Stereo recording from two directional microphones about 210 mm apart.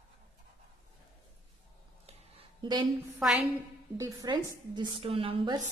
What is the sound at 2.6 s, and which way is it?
Speech, 20° right (ahead or behind).